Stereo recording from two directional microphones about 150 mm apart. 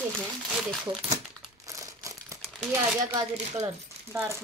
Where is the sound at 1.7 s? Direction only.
20° right (ahead or behind).